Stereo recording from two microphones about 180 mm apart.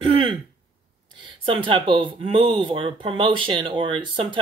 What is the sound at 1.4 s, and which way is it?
Speech, 30° right (ahead or behind).